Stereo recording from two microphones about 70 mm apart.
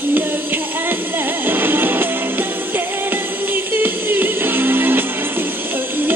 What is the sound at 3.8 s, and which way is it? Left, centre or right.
Music, right.